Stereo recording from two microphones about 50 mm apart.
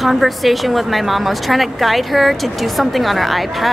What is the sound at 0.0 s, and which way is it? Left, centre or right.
A woman's voice, centre.